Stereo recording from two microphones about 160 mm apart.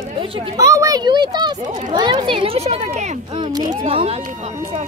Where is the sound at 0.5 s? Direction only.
20° right (ahead or behind).